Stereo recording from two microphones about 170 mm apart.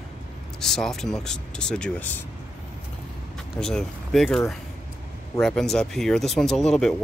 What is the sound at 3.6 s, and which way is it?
Speech, 5° left (ahead or behind).